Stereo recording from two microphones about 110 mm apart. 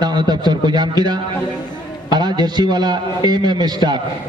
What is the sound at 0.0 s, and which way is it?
A man's voice, 40° right (ahead or behind).